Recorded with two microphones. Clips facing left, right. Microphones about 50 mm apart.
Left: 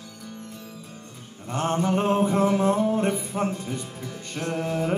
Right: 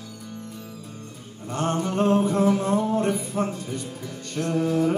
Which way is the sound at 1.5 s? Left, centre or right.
Centre.